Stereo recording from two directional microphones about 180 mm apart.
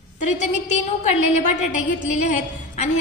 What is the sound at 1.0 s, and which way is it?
A woman's voice, 40° left (ahead or behind).